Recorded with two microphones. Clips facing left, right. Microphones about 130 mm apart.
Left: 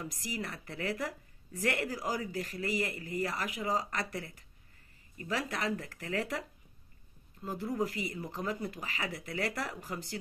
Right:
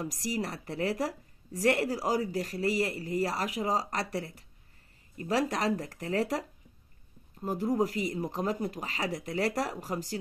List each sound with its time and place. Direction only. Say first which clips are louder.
0.0 s a woman's voice: right 6 dB; 40° right (ahead or behind)
7.8 s a woman's voice: right 5 dB; 45° right (ahead or behind)